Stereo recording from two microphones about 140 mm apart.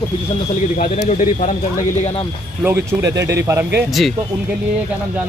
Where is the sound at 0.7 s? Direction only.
55° left (ahead or behind).